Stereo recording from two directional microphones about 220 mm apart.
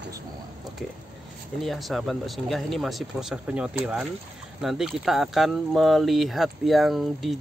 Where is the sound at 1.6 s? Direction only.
Centre (ahead or behind).